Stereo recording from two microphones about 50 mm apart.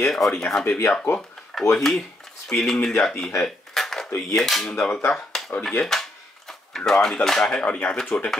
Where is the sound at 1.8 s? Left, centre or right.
Centre.